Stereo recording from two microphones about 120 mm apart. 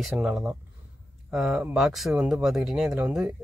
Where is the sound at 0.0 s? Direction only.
5° right (ahead or behind).